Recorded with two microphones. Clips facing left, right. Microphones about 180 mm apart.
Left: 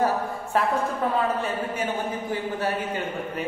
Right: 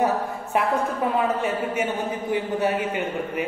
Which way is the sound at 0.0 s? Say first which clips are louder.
Right 1 dB; 15° right (ahead or behind).